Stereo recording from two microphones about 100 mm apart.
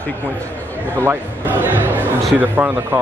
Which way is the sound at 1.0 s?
20° right (ahead or behind).